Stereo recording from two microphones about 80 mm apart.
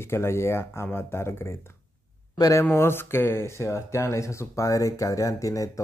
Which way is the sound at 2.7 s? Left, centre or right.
Left.